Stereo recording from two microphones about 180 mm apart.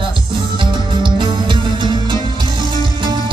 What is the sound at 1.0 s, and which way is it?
Music, 25° right (ahead or behind).